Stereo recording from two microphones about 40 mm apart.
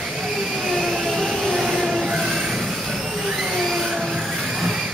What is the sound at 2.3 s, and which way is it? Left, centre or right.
Jet engine, centre.